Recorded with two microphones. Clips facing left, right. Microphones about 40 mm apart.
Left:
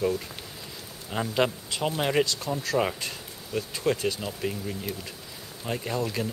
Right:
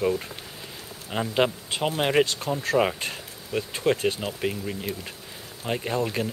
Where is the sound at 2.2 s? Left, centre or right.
Right.